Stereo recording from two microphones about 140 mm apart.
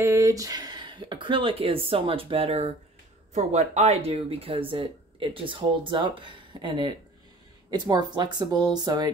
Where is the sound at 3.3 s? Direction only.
55° right (ahead or behind); by 9.1 s 30° right (ahead or behind).